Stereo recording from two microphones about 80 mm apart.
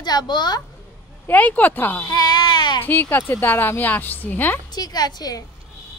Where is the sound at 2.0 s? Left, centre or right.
Left.